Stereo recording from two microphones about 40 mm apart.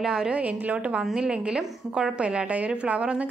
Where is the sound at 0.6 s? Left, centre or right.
Right.